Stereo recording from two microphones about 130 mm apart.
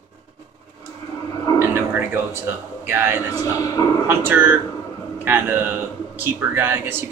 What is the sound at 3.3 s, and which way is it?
Speech, 30° left (ahead or behind).